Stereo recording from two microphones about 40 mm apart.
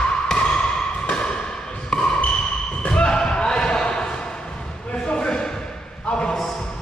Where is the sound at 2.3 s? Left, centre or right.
Left.